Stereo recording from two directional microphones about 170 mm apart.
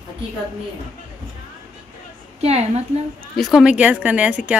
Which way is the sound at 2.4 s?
40° right (ahead or behind).